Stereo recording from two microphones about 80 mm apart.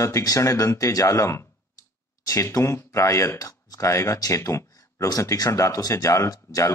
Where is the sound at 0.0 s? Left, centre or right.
Left.